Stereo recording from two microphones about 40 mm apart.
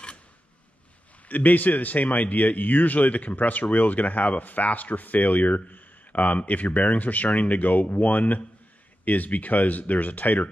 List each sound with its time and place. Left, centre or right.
1.3 s speech: left